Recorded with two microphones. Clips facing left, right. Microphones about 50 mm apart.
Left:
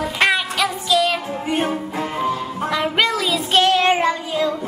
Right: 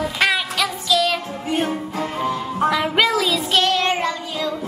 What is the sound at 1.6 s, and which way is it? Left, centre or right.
Music, centre.